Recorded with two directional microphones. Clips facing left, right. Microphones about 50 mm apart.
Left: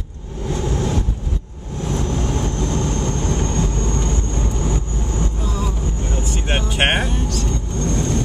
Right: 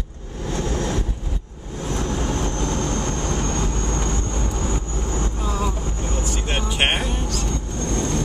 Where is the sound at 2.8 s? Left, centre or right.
Right.